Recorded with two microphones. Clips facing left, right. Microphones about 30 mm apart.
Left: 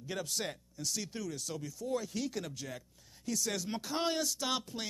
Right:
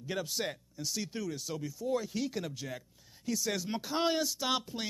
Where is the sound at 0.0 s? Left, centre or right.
Centre.